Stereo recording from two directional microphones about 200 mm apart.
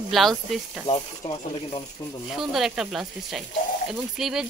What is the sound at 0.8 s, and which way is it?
Snake, 25° left (ahead or behind).